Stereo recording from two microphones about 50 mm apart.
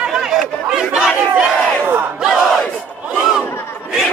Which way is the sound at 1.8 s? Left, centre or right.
Right.